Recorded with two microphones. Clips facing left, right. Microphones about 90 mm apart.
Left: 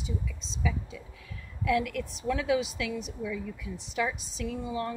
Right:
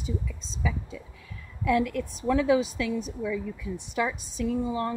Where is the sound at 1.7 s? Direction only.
25° right (ahead or behind).